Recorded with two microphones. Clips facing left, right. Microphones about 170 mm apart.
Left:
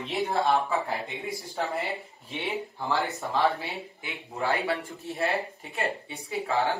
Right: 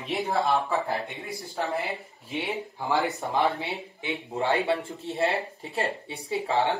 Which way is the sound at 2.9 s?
15° right (ahead or behind).